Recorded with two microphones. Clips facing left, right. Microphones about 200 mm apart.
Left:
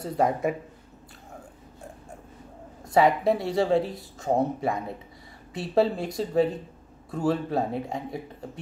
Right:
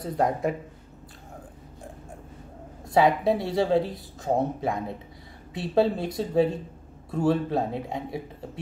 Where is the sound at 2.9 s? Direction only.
Centre (ahead or behind).